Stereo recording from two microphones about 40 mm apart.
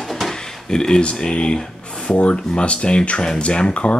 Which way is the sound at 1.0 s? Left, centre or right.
Left.